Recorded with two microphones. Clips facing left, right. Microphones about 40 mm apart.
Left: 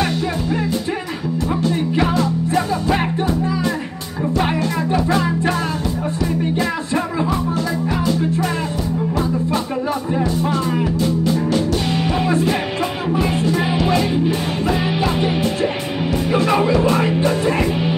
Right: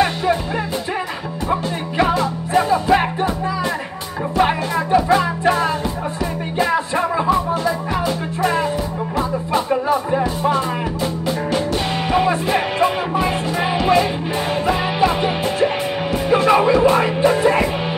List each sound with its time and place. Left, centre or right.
1.5 s music: right
5.1 s music: centre
6.6 s music: centre
9.5 s music: centre
16.3 s music: centre